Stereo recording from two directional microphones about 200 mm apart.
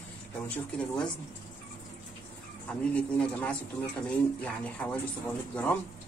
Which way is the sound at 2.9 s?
5° left (ahead or behind).